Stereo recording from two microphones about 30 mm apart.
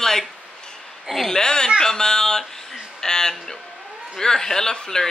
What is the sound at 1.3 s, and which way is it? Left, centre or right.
A woman's voice, left.